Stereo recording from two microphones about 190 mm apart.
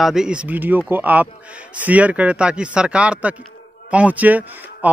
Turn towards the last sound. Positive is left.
turn(degrees=-10)  # may be behind; listen again after turning